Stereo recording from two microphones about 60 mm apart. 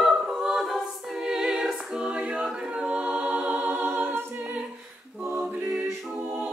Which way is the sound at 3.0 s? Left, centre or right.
Centre.